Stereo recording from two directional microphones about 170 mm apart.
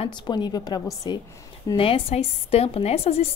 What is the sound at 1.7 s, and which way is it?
A woman's voice, 35° left (ahead or behind).